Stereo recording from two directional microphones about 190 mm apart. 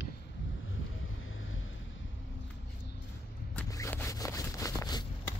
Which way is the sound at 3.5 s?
15° left (ahead or behind).